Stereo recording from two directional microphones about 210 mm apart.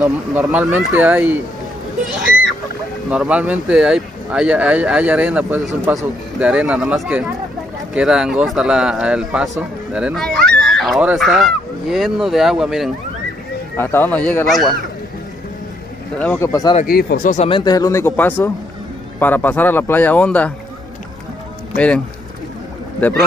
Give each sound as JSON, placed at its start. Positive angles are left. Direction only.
{"t": 0.0, "sound": "speech", "side_deg": -5}
{"t": 3.1, "sound": "a man's voice", "side_deg": -5}
{"t": 13.7, "sound": "speech", "side_deg": 10}
{"t": 16.2, "sound": "speech", "side_deg": 10}
{"t": 16.8, "sound": "speech", "side_deg": 45}
{"t": 17.5, "sound": "speech", "side_deg": 20}
{"t": 21.7, "sound": "a man's voice", "side_deg": 5}